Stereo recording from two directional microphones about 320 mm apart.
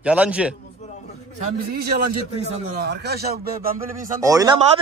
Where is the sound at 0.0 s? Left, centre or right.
Centre.